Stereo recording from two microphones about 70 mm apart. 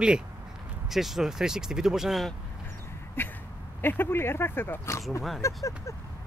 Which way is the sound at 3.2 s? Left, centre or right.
Left.